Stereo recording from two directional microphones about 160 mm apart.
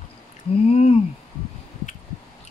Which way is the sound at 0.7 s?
40° left (ahead or behind).